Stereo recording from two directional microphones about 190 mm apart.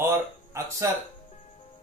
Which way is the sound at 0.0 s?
15° right (ahead or behind).